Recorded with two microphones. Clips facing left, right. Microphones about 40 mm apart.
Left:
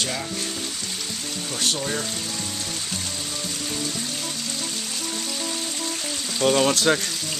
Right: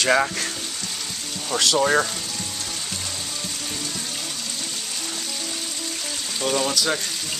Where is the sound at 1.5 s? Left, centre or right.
Right.